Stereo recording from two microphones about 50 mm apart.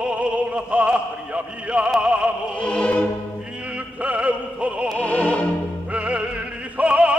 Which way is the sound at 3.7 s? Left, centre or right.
Right.